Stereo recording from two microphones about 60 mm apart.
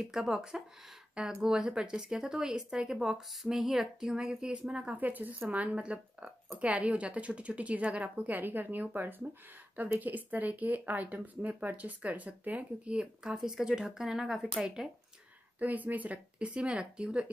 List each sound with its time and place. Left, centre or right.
0.1 s speech: centre
4.9 s speech: right; by 14.9 s centre
15.6 s speech: right